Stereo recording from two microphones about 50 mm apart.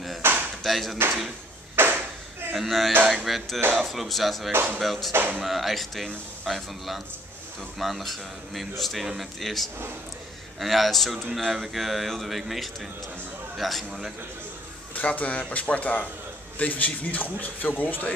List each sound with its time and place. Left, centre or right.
0.2 s chop: right
0.7 s speech: centre
1.8 s a sound: right
2.5 s speech: centre
15.0 s a man's voice: left